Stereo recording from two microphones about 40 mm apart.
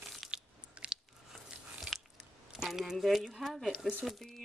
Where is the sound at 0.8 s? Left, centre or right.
Right.